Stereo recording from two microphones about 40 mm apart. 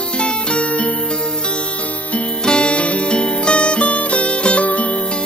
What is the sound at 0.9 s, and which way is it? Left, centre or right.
Music, left.